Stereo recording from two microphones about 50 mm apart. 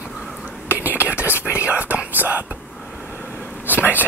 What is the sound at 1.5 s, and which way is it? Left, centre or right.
Speech, right.